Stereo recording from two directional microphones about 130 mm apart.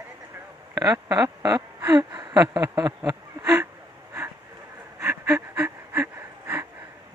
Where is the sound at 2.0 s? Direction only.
35° right (ahead or behind).